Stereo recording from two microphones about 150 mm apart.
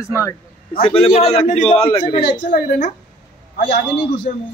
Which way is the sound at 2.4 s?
55° left (ahead or behind).